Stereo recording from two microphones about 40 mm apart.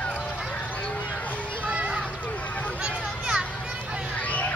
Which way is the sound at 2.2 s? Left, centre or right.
Left.